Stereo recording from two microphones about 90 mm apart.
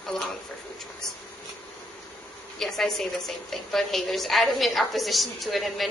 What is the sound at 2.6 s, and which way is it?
A woman's voice, 5° left (ahead or behind).